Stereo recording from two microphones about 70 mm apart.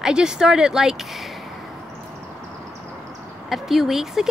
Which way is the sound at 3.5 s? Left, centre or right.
Centre.